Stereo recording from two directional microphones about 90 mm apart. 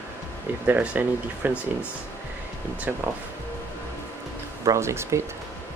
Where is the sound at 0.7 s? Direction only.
20° right (ahead or behind).